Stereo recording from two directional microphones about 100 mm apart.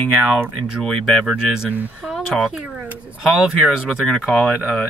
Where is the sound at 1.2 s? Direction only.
5° right (ahead or behind).